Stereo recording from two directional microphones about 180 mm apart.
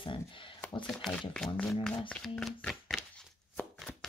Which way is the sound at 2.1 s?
Centre (ahead or behind).